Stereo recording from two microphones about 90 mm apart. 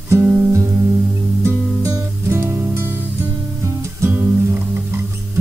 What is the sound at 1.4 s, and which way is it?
Music, 35° right (ahead or behind).